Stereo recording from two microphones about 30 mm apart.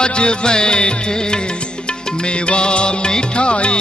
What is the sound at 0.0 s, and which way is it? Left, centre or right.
Music, left.